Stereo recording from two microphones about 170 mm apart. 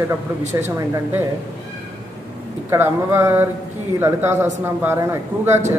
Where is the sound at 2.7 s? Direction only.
15° right (ahead or behind).